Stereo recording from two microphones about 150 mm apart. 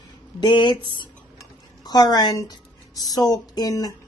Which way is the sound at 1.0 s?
25° left (ahead or behind).